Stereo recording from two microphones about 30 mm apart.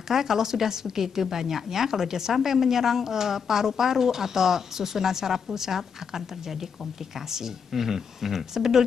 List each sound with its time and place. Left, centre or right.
0.1 s a woman's voice: centre